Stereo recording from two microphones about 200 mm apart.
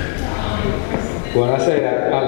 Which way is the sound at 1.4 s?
25° left (ahead or behind).